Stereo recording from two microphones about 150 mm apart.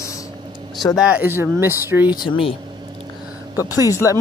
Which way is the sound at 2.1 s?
35° left (ahead or behind).